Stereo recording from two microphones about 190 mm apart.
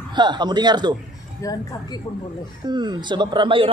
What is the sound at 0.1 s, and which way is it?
Speech, 25° right (ahead or behind).